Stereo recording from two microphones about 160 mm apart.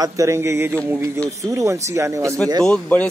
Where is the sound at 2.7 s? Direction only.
10° left (ahead or behind).